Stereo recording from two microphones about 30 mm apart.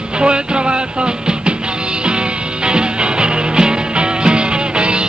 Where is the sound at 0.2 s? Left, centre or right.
Right.